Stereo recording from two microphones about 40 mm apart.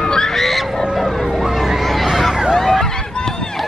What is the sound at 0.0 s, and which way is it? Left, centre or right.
Fowl, centre.